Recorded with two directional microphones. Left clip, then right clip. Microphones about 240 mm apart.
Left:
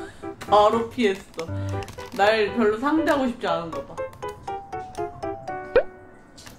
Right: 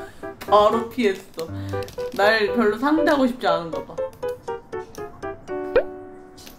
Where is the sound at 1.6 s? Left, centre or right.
Right.